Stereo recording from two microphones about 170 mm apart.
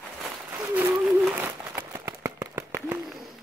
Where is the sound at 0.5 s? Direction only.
15° right (ahead or behind).